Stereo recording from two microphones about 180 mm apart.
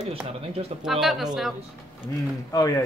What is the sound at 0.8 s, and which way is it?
Speech, centre (ahead or behind).